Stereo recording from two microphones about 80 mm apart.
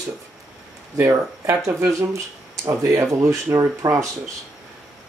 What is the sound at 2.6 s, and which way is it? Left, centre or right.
Speech, right.